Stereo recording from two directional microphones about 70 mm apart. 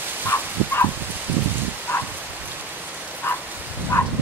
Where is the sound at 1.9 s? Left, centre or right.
Left.